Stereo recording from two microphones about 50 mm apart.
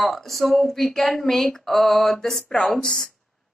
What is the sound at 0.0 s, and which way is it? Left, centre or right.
Speech, centre.